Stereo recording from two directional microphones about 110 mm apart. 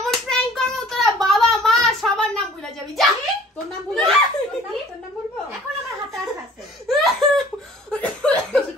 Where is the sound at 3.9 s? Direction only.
5° left (ahead or behind).